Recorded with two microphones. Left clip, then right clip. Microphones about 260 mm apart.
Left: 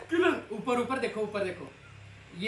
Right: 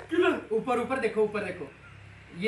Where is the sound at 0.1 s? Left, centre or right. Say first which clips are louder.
Right 1 dB; centre.